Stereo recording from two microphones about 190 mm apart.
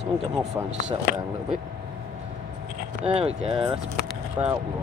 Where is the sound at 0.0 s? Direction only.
5° right (ahead or behind).